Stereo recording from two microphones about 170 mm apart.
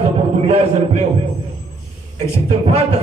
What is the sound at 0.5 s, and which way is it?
Speech, 35° right (ahead or behind).